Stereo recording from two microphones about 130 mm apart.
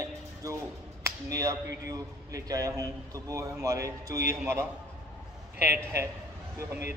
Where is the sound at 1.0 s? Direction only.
25° right (ahead or behind).